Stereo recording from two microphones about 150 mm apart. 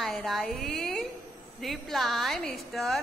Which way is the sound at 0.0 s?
Centre (ahead or behind).